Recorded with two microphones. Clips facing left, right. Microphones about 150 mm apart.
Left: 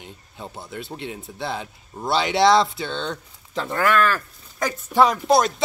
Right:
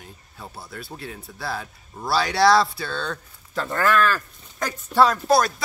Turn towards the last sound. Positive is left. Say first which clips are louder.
# left 1 dB
turn(degrees=20)  # may be behind; listen again after turning